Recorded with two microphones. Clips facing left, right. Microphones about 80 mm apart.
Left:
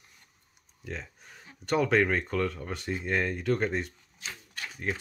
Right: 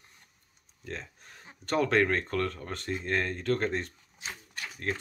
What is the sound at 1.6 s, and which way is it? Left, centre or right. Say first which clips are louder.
Speech: left 1 dB; centre.